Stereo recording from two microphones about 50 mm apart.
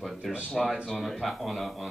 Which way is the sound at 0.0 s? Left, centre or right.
Centre.